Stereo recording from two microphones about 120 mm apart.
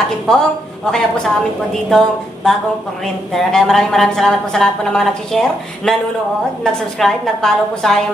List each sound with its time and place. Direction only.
0.3 s a woman's voice: 5° left (ahead or behind)